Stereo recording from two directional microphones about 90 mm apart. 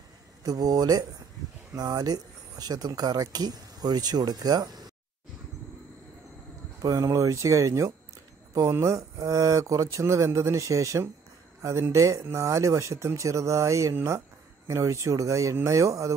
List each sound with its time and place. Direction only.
0.4 s speech: 45° right (ahead or behind)
7.0 s speech: 35° right (ahead or behind)